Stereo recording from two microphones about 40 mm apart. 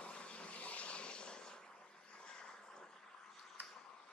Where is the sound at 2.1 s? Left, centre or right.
Left.